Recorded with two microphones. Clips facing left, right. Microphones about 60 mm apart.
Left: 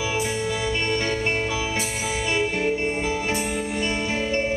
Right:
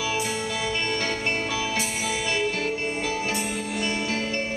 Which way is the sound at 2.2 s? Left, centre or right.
Centre.